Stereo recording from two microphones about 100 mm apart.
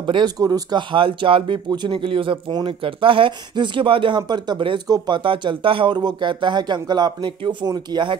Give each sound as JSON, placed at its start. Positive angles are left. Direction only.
{"t": 0.0, "sound": "speech", "side_deg": -55}
{"t": 0.4, "sound": "speech", "side_deg": -40}
{"t": 0.9, "sound": "speech", "side_deg": -60}